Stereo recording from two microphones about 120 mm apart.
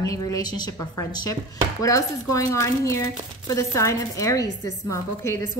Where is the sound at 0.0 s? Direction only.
30° left (ahead or behind).